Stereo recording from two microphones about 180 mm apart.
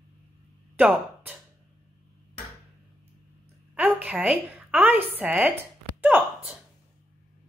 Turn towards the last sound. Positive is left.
turn(degrees=-10)  # may be behind; listen again after turning